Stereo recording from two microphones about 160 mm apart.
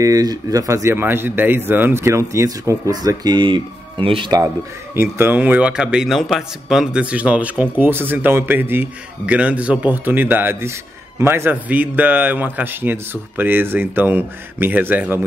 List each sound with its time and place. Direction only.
0.0 s speech: 20° right (ahead or behind)
4.9 s a man's voice: 15° right (ahead or behind)